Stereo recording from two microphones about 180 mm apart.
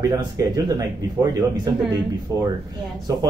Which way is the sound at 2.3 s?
20° right (ahead or behind).